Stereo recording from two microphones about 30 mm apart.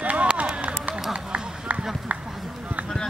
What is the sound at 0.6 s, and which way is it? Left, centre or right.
Run, right.